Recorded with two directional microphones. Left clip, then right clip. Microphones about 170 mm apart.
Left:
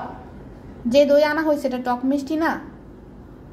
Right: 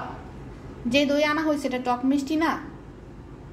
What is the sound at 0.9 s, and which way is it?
A woman's voice, 15° left (ahead or behind).